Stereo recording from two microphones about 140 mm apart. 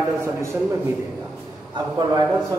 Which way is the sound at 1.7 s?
30° right (ahead or behind).